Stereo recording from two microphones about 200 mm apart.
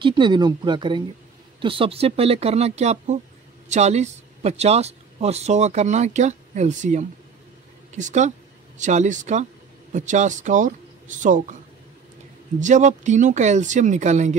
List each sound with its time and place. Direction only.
0.0 s speech: 25° right (ahead or behind); by 11.4 s 40° right (ahead or behind)
12.5 s speech: 35° right (ahead or behind)